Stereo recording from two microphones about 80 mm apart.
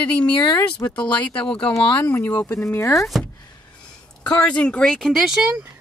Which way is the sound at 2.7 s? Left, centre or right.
Left.